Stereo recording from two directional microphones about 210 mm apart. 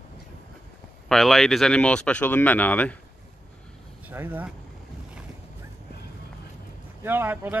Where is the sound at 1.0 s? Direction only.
Centre (ahead or behind).